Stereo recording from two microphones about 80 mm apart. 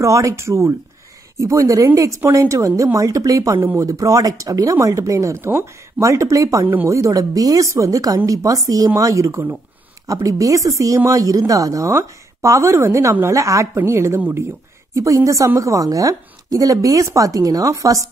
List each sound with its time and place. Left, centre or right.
0.0 s a woman's voice: right